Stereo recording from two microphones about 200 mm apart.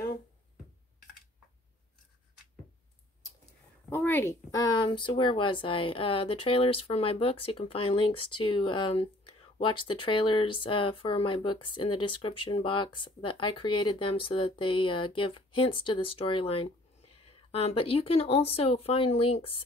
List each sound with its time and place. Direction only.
3.9 s speech: 10° left (ahead or behind); by 19.6 s 25° left (ahead or behind)